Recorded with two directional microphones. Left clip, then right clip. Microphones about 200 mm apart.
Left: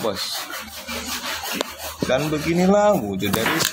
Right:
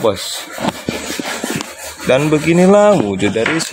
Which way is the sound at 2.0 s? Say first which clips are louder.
Right 9 dB; 40° right (ahead or behind).